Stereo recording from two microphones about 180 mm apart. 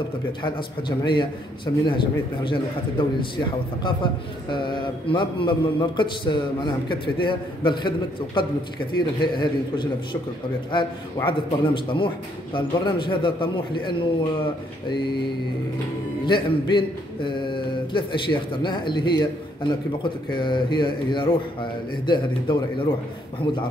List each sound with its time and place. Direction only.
0.4 s a man's voice: 25° left (ahead or behind)
11.2 s a man's voice: 25° left (ahead or behind)
16.3 s a man's voice: 25° left (ahead or behind)